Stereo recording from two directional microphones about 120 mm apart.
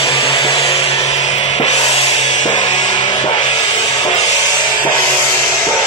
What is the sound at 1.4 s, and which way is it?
Music, 55° left (ahead or behind).